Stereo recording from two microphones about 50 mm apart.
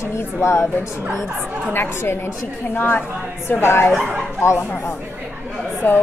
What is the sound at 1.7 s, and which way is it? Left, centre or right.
Speech, left.